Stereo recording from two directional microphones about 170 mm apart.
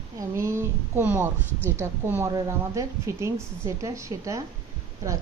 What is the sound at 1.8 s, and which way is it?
A woman's voice, 15° right (ahead or behind).